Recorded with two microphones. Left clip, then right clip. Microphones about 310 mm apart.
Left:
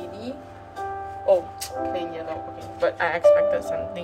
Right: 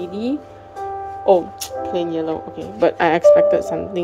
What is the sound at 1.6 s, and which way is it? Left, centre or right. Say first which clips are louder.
Speech: right 5 dB; right.